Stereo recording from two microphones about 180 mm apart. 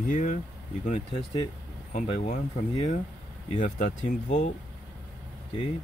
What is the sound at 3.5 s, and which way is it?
Speech, 45° left (ahead or behind).